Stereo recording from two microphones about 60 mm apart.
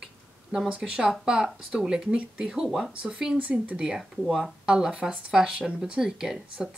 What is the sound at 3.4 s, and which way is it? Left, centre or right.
Speech, right.